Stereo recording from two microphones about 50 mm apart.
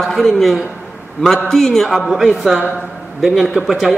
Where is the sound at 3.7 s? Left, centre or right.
Centre.